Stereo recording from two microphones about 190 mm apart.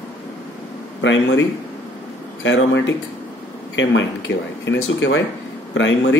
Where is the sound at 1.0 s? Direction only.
75° left (ahead or behind).